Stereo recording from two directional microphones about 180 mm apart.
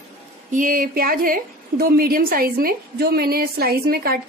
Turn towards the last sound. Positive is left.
turn(degrees=-60)  # may be behind; listen again after turning